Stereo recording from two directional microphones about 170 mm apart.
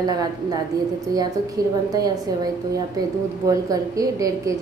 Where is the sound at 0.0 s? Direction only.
20° right (ahead or behind).